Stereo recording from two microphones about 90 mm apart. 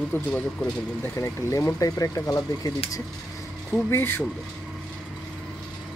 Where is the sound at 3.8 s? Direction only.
25° left (ahead or behind).